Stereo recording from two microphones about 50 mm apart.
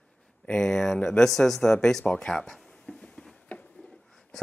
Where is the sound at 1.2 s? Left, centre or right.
Centre.